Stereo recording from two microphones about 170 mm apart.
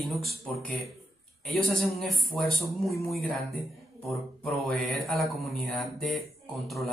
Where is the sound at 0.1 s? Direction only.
Centre (ahead or behind).